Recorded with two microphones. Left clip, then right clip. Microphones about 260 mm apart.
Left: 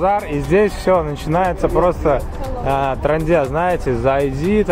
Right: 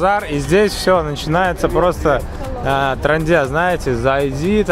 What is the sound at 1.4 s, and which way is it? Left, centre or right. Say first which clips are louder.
Speech: even; right.